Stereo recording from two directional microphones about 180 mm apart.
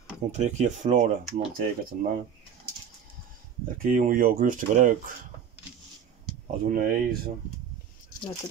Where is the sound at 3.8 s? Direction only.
50° right (ahead or behind).